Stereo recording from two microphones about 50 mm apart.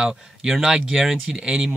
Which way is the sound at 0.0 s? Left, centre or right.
Centre.